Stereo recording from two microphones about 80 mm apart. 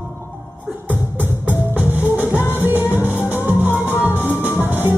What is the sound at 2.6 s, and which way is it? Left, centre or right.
Music, right.